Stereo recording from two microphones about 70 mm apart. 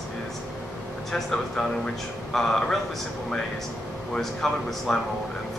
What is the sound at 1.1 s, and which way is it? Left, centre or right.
A man's voice, centre.